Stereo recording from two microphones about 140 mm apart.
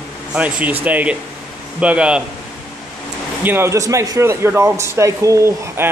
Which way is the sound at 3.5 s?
20° right (ahead or behind).